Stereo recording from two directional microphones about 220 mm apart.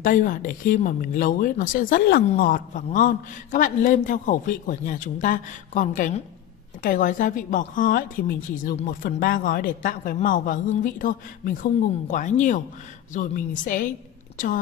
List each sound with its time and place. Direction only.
0.0 s speech: 40° left (ahead or behind)